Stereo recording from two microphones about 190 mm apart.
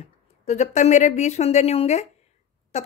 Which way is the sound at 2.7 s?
35° left (ahead or behind).